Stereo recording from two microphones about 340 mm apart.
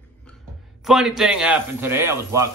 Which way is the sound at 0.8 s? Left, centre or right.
Centre.